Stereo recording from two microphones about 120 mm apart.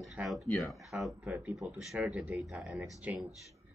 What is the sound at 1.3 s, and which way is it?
Speech, 10° right (ahead or behind).